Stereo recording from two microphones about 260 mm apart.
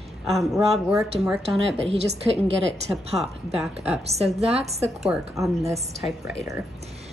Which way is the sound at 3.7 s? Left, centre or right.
Centre.